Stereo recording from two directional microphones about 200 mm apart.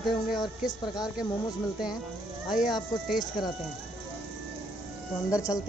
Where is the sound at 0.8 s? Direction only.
20° left (ahead or behind).